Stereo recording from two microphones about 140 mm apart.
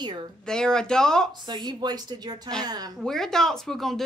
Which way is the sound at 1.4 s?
30° right (ahead or behind).